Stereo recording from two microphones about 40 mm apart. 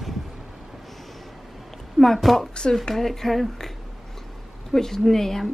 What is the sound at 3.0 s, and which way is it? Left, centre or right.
Speech, centre.